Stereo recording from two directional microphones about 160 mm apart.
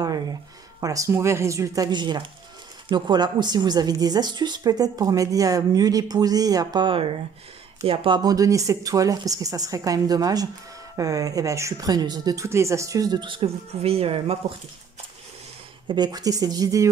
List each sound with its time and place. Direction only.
0.0 s a woman's voice: 25° right (ahead or behind)
15.9 s a woman's voice: 25° right (ahead or behind)